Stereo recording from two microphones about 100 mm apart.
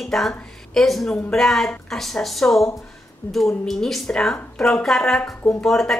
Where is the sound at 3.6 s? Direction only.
5° left (ahead or behind).